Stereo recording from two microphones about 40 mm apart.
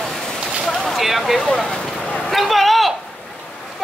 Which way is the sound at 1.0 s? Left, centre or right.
Centre.